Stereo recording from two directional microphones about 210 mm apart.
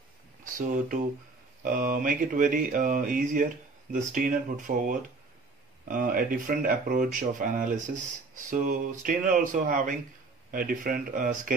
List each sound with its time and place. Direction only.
0.4 s speech: 40° right (ahead or behind)